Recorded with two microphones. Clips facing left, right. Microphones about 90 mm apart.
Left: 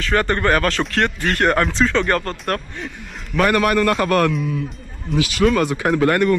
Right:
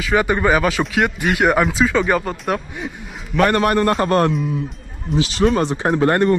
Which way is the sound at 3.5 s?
30° right (ahead or behind).